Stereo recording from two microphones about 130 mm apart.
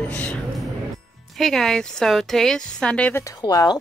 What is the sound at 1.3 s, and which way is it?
Speech, centre (ahead or behind).